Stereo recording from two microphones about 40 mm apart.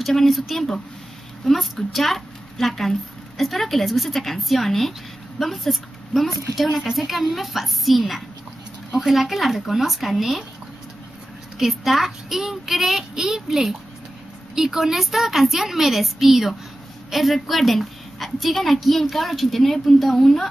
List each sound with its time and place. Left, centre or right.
0.0 s a woman's voice: centre
11.5 s a child's voice: centre